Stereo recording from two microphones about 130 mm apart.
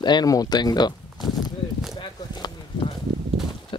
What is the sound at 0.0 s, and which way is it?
Speech, 30° left (ahead or behind).